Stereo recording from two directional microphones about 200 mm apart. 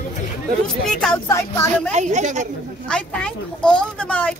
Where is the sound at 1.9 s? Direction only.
35° right (ahead or behind).